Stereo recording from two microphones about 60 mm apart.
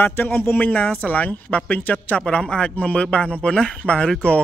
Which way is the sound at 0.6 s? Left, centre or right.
Left.